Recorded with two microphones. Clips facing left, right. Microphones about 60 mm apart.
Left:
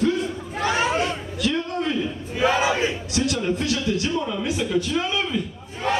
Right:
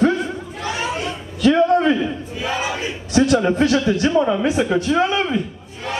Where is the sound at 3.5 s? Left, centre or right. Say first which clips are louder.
Right 7 dB; right.